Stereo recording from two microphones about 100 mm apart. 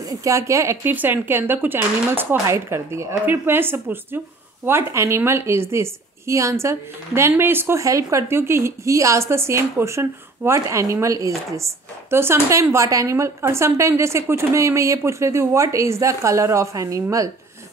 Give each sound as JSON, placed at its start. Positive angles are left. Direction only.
{"t": 0.0, "sound": "a woman's voice", "side_deg": -35}